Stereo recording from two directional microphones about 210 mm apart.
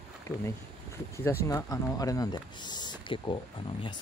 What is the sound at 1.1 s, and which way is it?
Speech, 15° left (ahead or behind).